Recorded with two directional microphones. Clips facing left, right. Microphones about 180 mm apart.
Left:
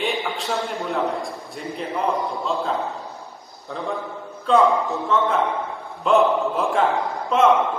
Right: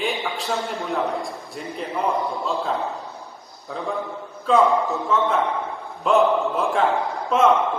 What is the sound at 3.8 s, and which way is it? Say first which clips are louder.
A man's voice: right 1 dB; centre (ahead or behind).